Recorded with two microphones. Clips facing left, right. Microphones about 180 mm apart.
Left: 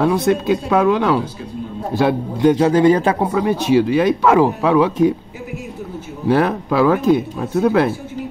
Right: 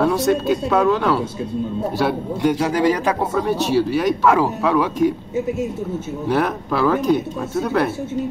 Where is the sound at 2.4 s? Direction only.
25° left (ahead or behind).